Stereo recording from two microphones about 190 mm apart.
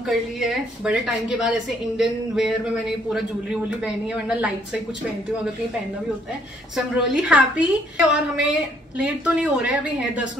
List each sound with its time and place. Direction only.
0.0 s a man's voice: centre (ahead or behind)
7.0 s a man's voice: 5° right (ahead or behind)